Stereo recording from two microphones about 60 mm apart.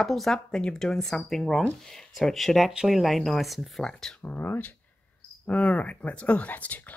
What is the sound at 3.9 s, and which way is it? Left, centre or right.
Speech, centre.